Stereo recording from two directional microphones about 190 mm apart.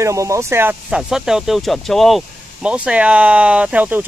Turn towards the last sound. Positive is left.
turn(degrees=-10)  # may be behind; listen again after turning